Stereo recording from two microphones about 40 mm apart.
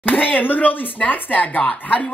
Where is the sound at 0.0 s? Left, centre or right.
Left.